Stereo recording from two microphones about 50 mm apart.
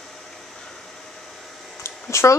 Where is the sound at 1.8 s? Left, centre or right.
Left.